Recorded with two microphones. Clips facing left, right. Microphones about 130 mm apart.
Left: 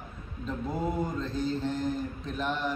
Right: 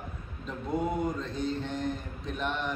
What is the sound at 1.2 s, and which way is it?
Mantra, centre (ahead or behind).